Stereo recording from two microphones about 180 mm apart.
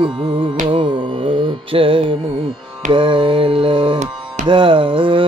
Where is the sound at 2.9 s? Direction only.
30° right (ahead or behind).